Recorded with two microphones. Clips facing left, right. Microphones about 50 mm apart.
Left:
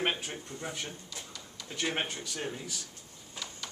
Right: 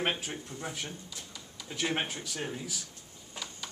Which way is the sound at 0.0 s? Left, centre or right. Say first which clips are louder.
Even; centre.